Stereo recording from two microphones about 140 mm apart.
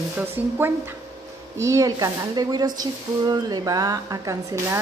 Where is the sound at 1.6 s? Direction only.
25° right (ahead or behind).